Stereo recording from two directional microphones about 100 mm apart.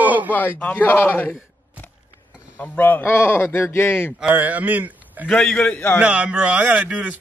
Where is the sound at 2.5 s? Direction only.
15° left (ahead or behind).